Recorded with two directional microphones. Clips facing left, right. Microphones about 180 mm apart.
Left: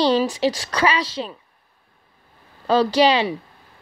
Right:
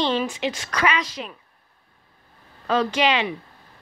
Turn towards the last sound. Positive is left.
turn(degrees=35)  # may be behind; listen again after turning